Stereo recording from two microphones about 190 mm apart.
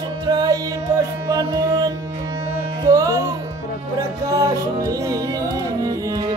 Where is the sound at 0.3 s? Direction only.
20° right (ahead or behind).